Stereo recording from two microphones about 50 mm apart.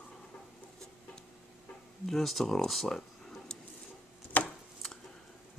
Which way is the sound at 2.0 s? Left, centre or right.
Centre.